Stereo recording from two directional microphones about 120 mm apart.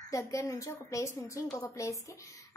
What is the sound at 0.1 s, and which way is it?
A woman's voice, 25° left (ahead or behind).